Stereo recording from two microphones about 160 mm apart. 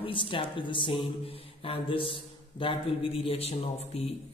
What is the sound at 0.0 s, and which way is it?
Speech, 30° left (ahead or behind).